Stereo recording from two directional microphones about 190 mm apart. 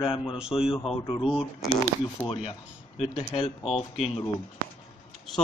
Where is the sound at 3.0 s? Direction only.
30° left (ahead or behind).